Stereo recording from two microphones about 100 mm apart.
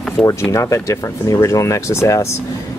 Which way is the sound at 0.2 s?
30° left (ahead or behind).